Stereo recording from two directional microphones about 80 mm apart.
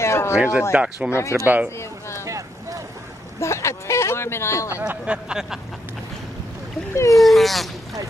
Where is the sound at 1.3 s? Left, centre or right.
Right.